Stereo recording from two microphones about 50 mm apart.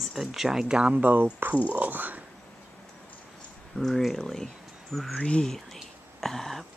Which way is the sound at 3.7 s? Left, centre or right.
Centre.